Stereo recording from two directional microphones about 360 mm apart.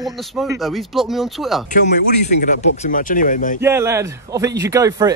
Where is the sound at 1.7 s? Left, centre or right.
Centre.